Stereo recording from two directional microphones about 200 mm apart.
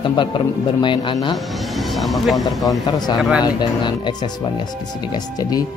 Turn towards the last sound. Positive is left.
turn(degrees=20)  # may be behind; listen again after turning